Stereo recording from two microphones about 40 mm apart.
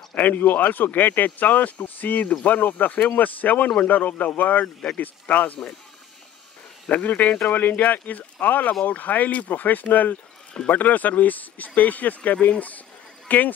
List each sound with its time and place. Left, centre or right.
0.1 s speech: left
6.9 s speech: left